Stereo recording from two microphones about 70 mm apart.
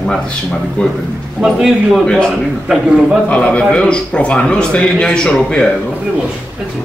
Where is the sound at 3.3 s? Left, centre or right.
Centre.